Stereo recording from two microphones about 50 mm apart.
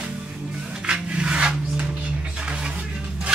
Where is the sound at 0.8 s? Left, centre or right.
Right.